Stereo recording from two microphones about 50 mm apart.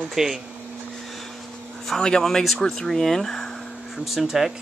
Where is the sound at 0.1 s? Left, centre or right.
Centre.